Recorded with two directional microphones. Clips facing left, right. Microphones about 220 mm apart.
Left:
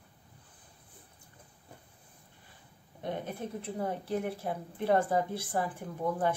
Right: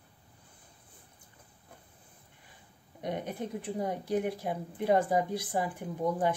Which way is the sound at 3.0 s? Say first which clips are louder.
Right 1 dB; 15° right (ahead or behind).